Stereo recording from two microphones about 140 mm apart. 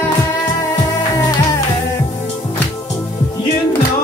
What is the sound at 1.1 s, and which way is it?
Music, 25° left (ahead or behind).